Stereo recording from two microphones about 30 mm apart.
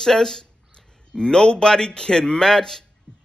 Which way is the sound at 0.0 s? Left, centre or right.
Centre.